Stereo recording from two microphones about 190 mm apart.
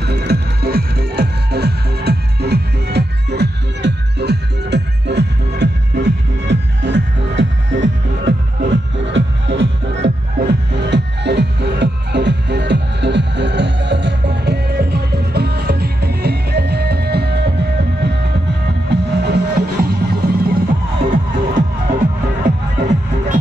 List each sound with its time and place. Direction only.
0.0 s music: 60° right (ahead or behind)
18.9 s music: 60° right (ahead or behind); by 21.9 s 45° right (ahead or behind)
22.5 s music: 65° right (ahead or behind)
22.8 s music: 40° right (ahead or behind)